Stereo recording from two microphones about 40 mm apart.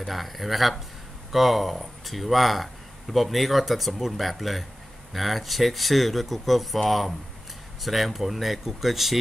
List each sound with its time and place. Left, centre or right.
0.0 s speech: centre